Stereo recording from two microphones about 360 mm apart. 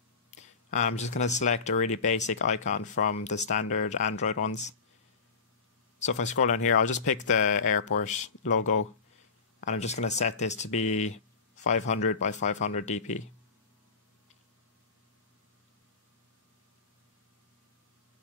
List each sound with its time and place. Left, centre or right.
0.3 s speech: centre
5.9 s speech: centre
9.6 s speech: centre